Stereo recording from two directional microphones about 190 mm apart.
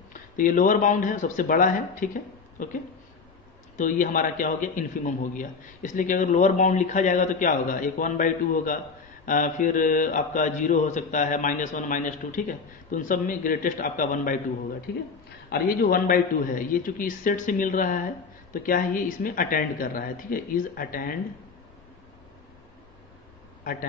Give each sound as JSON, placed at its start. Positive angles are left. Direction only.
{"t": 0.4, "sound": "a man's voice", "side_deg": 45}
{"t": 15.5, "sound": "a man's voice", "side_deg": 50}
{"t": 23.6, "sound": "a man's voice", "side_deg": 50}